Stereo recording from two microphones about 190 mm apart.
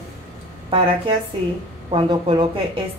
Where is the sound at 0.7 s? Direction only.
30° right (ahead or behind).